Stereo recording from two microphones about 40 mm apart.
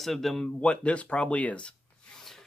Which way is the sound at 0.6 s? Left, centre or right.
Left.